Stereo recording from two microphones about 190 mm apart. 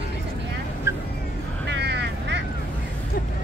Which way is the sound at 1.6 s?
65° right (ahead or behind).